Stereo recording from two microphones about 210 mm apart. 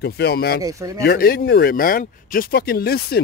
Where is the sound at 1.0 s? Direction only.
45° left (ahead or behind).